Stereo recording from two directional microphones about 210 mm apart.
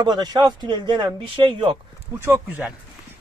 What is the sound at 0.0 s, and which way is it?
Speech, 20° right (ahead or behind).